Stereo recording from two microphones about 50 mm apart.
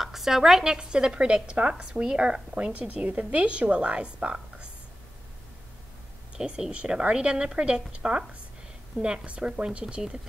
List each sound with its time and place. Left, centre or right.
0.0 s a woman's voice: centre; by 4.6 s right
6.3 s a woman's voice: centre